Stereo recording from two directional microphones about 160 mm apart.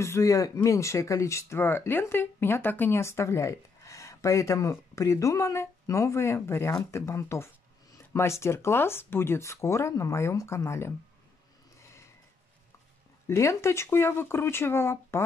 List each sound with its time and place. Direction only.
0.0 s speech: 20° left (ahead or behind)
13.3 s speech: 20° left (ahead or behind)